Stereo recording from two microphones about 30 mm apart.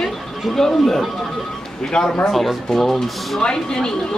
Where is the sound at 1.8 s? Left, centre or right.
Left.